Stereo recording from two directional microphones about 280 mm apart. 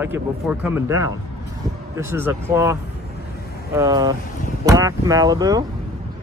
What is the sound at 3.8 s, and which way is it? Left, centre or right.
Speech, centre.